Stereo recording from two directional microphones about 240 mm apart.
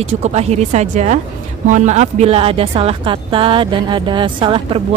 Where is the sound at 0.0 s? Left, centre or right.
Right.